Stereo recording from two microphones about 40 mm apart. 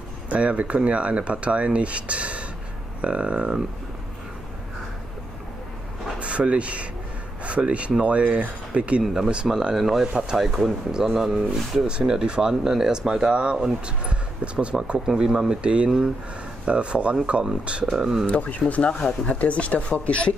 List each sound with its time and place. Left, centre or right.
0.3 s speech: right
6.1 s speech: right
9.0 s speech: centre
9.8 s speech: centre
13.3 s speech: right
15.0 s speech: centre
17.9 s speech: centre
18.2 s speech: left